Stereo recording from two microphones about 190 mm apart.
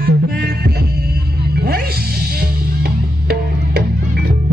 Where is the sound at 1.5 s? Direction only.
55° right (ahead or behind).